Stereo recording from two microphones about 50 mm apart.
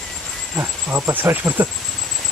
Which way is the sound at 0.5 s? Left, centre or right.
Right.